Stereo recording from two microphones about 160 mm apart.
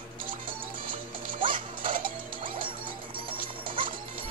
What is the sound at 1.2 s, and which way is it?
Music, 30° right (ahead or behind).